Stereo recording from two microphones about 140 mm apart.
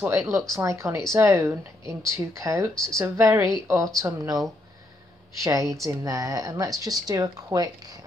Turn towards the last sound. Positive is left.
turn(degrees=-25)  # may be behind; listen again after turning